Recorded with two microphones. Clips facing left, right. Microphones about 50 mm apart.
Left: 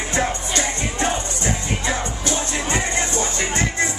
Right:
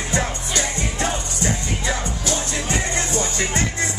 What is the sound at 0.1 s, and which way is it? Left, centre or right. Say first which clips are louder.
Music: left 2 dB; centre.